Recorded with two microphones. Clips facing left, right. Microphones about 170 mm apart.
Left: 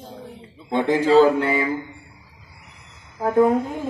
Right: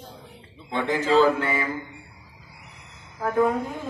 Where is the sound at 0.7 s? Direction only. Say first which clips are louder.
Left 5 dB; 15° left (ahead or behind).